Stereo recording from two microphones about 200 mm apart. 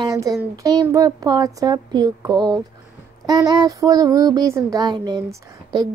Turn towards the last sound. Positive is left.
turn(degrees=-20)  # may be behind; listen again after turning